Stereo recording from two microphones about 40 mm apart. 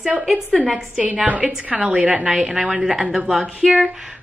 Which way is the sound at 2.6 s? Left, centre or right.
Right.